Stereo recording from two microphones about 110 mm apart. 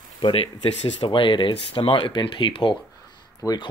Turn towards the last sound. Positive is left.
turn(degrees=30)  # may be behind; listen again after turning